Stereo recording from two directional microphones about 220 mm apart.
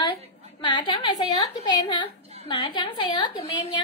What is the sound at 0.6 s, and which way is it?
A woman's voice, 20° left (ahead or behind).